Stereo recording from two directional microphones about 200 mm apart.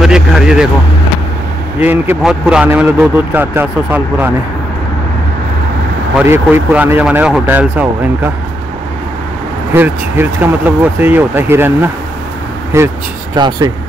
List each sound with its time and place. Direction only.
0.0 s speech: 5° right (ahead or behind)
1.8 s a man's voice: 10° right (ahead or behind)
6.2 s a man's voice: 10° right (ahead or behind)
9.8 s a man's voice: 10° right (ahead or behind)